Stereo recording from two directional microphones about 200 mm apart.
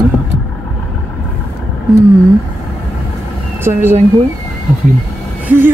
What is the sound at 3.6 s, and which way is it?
Speech, 10° right (ahead or behind).